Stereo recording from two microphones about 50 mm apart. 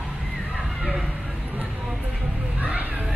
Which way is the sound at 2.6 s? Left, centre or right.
Right.